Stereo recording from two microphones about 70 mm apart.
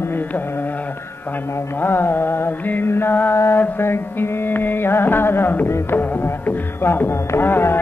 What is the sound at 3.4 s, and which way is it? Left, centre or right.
Music, left.